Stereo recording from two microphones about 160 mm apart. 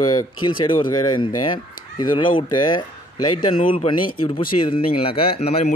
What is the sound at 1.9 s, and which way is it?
Speech, 25° left (ahead or behind).